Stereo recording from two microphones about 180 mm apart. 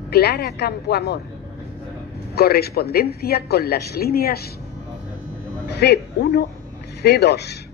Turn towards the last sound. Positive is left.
turn(degrees=65)  # may be behind; listen again after turning